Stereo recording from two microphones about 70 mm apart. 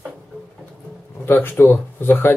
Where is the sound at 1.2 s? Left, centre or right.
Left.